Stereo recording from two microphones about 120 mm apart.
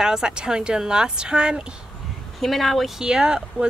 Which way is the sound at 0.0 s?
5° right (ahead or behind).